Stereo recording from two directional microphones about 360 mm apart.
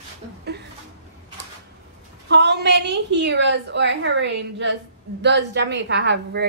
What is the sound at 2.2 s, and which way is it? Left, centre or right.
A woman's voice, right.